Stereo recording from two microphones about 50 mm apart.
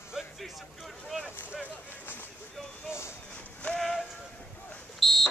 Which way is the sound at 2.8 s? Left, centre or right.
Left.